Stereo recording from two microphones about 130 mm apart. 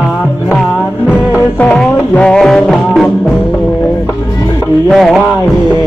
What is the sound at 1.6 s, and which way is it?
Music, 5° left (ahead or behind).